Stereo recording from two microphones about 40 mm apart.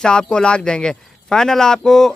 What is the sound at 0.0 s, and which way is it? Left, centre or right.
A man's voice, centre.